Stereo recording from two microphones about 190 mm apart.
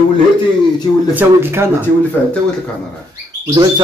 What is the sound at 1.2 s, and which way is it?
Speech, 10° right (ahead or behind).